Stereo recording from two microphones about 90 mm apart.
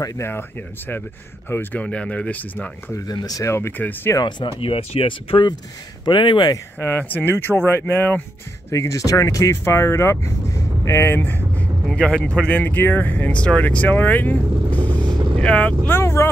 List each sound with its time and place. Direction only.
0.2 s speech: 25° left (ahead or behind)
3.1 s speech: 45° left (ahead or behind)
3.4 s speech: 30° left (ahead or behind)
4.5 s speech: 90° left
6.0 s speech: 60° left (ahead or behind)
6.8 s speech: 20° left (ahead or behind)
8.6 s speech: 35° left (ahead or behind)
11.9 s speech: 10° left (ahead or behind)
16.0 s vehicle: 30° left (ahead or behind)